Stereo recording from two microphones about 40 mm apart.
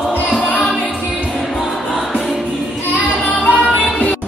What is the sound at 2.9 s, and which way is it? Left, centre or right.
Child singing, left.